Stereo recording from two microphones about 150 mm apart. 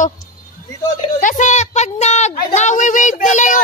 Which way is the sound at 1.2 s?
55° left (ahead or behind).